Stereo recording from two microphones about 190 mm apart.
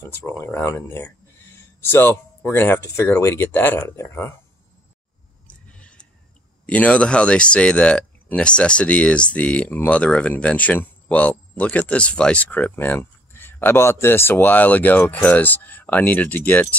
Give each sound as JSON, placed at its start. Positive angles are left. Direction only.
{"t": 0.3, "sound": "speech", "side_deg": 10}
{"t": 5.5, "sound": "a sound", "side_deg": 5}
{"t": 6.6, "sound": "speech", "side_deg": 5}